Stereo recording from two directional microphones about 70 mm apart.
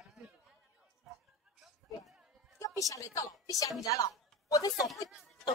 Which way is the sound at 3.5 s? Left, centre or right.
Left.